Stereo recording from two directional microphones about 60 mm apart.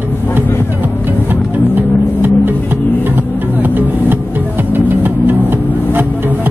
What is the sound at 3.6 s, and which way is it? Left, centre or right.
Music, right.